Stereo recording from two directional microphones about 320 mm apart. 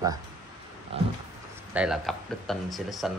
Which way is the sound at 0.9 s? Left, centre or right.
Centre.